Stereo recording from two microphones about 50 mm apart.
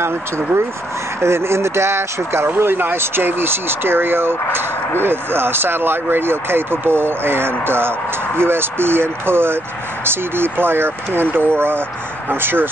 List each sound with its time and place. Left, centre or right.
1.2 s speech: right
2.4 s speech: right